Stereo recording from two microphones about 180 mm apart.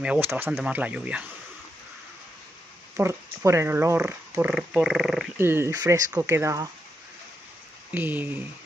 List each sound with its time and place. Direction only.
0.0 s speech: 10° right (ahead or behind)
3.0 s speech: 15° right (ahead or behind)
5.4 s speech: 15° right (ahead or behind)
7.9 s speech: 10° right (ahead or behind)